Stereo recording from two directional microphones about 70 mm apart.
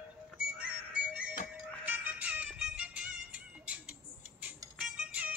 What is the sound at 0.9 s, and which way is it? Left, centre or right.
Music, right.